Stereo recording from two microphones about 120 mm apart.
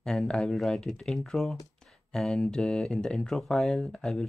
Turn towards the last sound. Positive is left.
turn(degrees=5)  # may be behind; listen again after turning